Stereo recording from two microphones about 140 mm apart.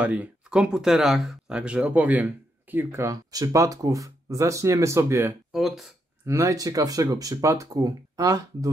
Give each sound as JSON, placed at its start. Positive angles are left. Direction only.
{"t": 0.0, "sound": "speech", "side_deg": -10}
{"t": 5.5, "sound": "speech", "side_deg": 0}
{"t": 6.2, "sound": "speech", "side_deg": -20}